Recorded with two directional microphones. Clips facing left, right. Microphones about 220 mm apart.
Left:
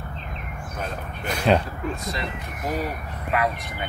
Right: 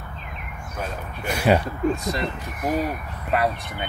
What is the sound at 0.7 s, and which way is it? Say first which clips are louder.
Speech: right 1 dB; 10° right (ahead or behind).